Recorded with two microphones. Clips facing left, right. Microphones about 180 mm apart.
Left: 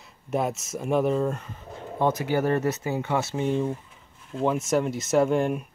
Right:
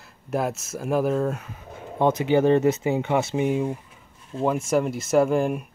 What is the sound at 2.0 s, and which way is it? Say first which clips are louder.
Speech: right 4 dB; 20° right (ahead or behind).